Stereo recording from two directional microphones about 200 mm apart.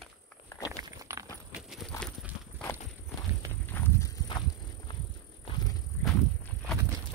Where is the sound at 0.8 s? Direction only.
15° right (ahead or behind).